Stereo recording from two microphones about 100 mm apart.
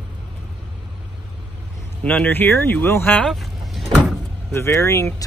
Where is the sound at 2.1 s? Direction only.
15° left (ahead or behind).